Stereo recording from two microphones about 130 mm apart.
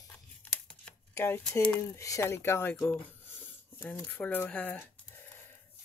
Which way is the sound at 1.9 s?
20° left (ahead or behind).